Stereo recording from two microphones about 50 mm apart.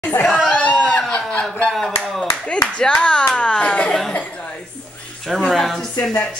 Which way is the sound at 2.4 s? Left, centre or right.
Left.